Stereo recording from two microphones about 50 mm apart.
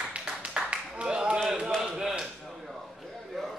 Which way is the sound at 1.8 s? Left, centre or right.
Centre.